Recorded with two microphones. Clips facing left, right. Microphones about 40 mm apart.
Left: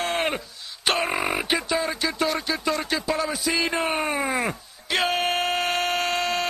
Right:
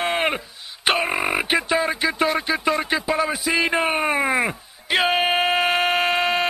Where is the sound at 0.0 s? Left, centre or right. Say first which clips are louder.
Right 3 dB; centre.